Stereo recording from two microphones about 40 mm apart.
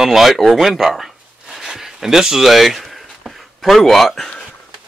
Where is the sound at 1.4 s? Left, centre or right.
Centre.